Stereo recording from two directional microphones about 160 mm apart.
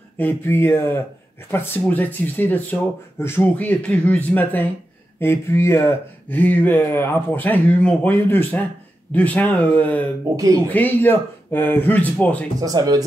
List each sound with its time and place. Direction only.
0.2 s speech: 15° left (ahead or behind)
10.3 s speech: 20° right (ahead or behind)
10.7 s speech: 10° left (ahead or behind)
12.5 s speech: 20° right (ahead or behind)